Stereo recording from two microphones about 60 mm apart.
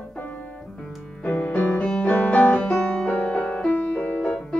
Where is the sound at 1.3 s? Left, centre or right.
Centre.